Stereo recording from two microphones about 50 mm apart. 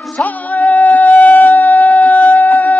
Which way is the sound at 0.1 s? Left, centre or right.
Left.